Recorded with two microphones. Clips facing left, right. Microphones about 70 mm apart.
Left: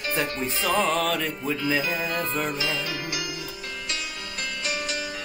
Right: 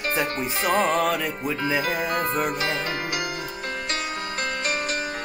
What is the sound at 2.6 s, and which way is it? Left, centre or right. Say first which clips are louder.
Music: right 3 dB; right.